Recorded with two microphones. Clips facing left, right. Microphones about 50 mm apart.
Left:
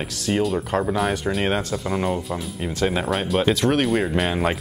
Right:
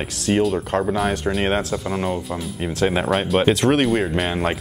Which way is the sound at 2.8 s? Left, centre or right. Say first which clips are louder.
Right 3 dB; centre.